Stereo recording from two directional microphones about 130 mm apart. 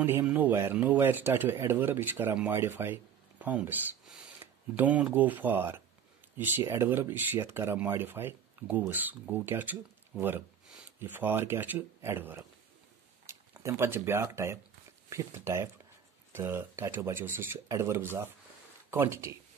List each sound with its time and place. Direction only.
0.0 s speech: 15° right (ahead or behind)